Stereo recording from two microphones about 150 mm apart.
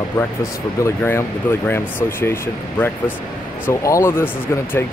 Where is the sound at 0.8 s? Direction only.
15° left (ahead or behind).